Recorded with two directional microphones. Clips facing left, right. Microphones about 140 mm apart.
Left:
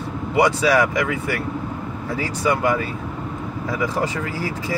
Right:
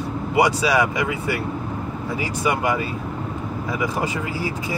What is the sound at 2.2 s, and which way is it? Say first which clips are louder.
Speech: left 2 dB; 15° right (ahead or behind).